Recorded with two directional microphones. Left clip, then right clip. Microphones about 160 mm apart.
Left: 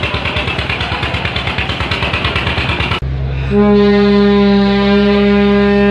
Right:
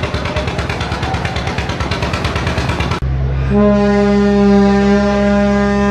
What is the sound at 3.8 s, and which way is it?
Wind instrument, 65° right (ahead or behind).